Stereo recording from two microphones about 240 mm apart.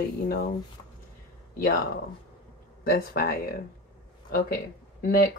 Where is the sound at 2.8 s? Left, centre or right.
Left.